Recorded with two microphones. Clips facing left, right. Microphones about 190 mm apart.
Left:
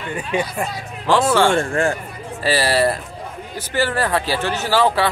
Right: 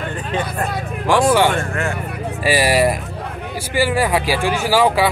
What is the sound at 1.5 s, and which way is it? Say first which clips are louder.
Speech: left 3 dB; 30° left (ahead or behind).